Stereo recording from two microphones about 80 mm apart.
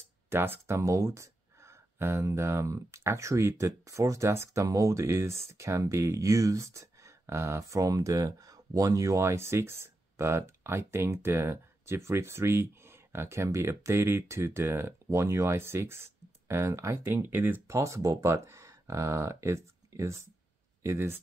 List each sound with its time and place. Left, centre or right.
0.3 s speech: right
17.7 s speech: right